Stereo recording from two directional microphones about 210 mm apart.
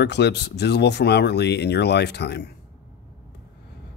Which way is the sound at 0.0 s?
55° left (ahead or behind).